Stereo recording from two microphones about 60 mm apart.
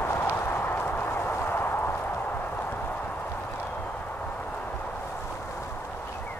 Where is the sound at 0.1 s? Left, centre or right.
Left.